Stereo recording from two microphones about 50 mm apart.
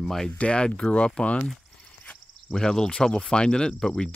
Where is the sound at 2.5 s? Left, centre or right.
Centre.